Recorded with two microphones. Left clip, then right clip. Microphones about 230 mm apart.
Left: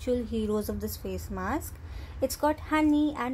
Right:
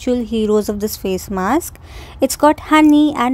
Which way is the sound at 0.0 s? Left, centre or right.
Right.